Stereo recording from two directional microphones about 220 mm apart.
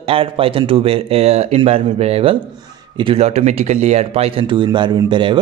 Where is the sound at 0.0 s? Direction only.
25° right (ahead or behind).